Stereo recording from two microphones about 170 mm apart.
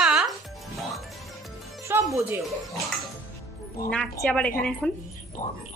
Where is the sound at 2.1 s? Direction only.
15° right (ahead or behind).